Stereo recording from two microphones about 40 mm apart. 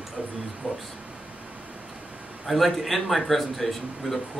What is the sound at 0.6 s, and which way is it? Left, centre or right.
Speech, centre.